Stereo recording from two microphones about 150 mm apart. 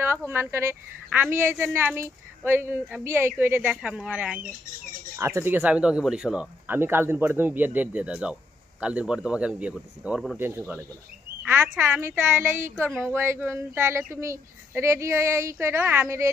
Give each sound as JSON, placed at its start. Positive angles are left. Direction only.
{"t": 0.3, "sound": "a woman's voice", "side_deg": -15}
{"t": 12.8, "sound": "speech", "side_deg": 5}
{"t": 13.1, "sound": "a woman's voice", "side_deg": -15}